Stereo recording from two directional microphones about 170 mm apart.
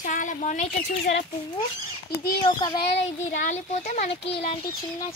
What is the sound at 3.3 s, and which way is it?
A woman's voice, 45° left (ahead or behind).